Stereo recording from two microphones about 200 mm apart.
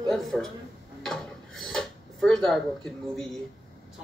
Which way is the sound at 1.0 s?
Centre (ahead or behind).